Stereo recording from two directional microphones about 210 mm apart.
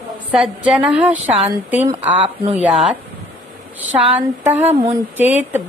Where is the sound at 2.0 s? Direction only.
30° right (ahead or behind).